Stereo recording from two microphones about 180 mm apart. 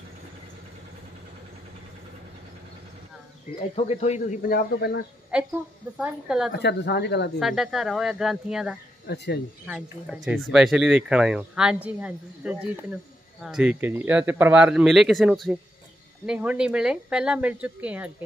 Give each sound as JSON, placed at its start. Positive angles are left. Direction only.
{"t": 3.7, "sound": "speech", "side_deg": 35}
{"t": 5.3, "sound": "a woman's voice", "side_deg": -5}
{"t": 6.6, "sound": "speech", "side_deg": 70}
{"t": 7.3, "sound": "speech", "side_deg": 0}
{"t": 9.0, "sound": "speech", "side_deg": 65}
{"t": 9.7, "sound": "speech", "side_deg": -5}